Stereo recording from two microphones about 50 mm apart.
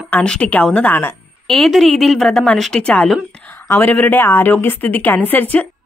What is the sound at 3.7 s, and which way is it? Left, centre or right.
Speech, left.